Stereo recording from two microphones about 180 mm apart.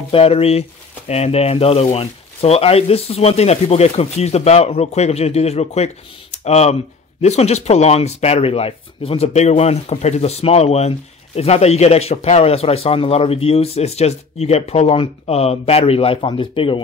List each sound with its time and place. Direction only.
0.1 s speech: 35° left (ahead or behind)